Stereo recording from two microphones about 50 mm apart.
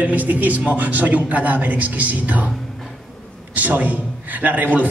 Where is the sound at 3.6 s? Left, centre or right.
Right.